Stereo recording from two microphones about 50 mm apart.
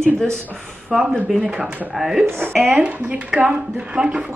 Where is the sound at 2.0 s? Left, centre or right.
Centre.